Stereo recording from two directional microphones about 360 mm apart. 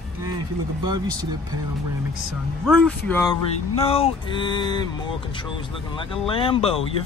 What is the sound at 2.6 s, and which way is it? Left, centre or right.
Speech, centre.